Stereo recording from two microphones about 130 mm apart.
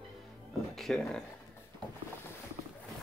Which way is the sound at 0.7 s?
Centre (ahead or behind).